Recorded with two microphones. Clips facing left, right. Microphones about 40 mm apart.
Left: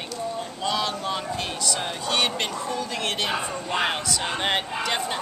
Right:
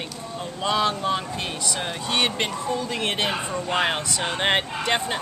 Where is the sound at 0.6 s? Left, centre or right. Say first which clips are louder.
Right 5 dB; right.